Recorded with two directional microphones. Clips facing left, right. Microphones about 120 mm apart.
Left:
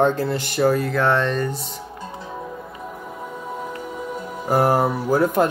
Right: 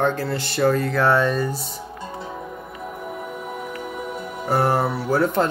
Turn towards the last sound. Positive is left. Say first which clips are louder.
# left 2 dB
turn(degrees=10)  # may be behind; listen again after turning